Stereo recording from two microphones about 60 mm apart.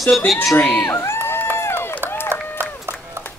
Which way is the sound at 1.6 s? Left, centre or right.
Left.